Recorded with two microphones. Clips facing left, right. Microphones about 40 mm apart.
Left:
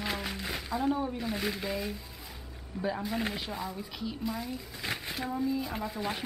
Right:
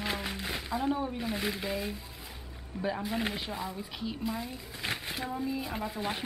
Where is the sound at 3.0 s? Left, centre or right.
Right.